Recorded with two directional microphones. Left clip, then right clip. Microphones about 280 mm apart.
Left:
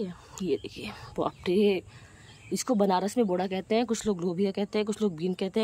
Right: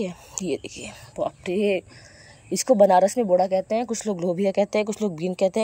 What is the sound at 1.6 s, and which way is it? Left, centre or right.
Speech, left.